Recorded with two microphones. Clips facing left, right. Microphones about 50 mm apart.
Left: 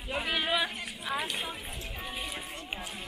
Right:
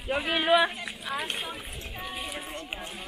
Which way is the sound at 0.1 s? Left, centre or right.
Right.